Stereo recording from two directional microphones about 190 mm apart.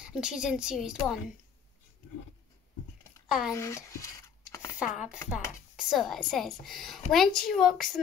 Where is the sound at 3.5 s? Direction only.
15° left (ahead or behind).